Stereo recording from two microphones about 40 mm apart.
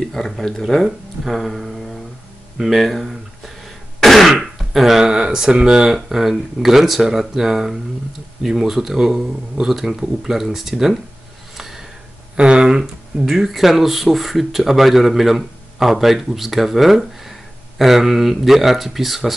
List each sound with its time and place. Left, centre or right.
0.0 s a sound: centre
0.3 s speech: centre
2.5 s throat clearing: centre
4.4 s speech: centre
5.9 s speech: centre
11.5 s a sound: centre
12.4 s speech: right
13.2 s speech: centre